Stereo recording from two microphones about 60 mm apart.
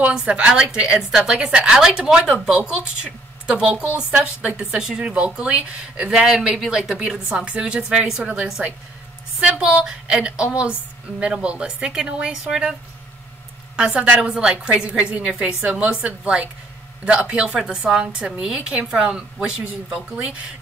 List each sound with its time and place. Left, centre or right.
0.1 s a woman's voice: centre
13.7 s a woman's voice: centre